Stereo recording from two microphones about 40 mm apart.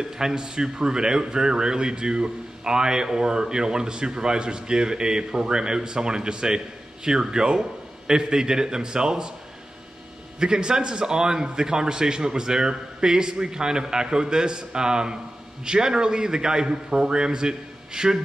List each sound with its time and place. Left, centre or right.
0.0 s speech: centre
10.4 s a man's voice: right